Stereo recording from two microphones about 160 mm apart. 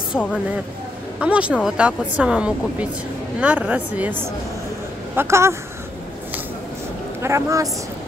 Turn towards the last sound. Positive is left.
turn(degrees=-20)  # may be behind; listen again after turning